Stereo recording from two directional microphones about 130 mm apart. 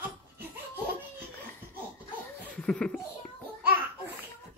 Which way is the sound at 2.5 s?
10° left (ahead or behind).